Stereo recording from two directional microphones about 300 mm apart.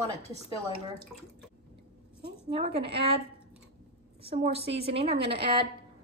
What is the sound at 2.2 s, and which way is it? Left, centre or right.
Speech, centre.